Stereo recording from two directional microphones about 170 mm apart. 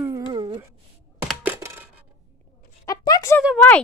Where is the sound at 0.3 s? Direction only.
25° right (ahead or behind).